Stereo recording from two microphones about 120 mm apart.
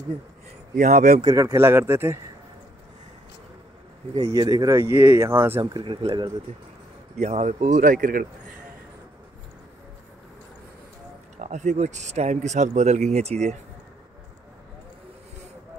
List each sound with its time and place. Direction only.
0.7 s speech: 80° right
1.2 s speech: 30° right (ahead or behind)
4.3 s speech: 30° right (ahead or behind)
5.6 s speech: 40° right (ahead or behind)
7.2 s speech: 75° right (ahead or behind); by 8.0 s 90° right
11.3 s speech: 75° right (ahead or behind)